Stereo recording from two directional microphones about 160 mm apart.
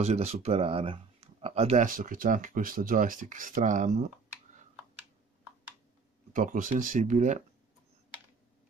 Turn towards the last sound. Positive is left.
turn(degrees=-50)  # may be behind; listen again after turning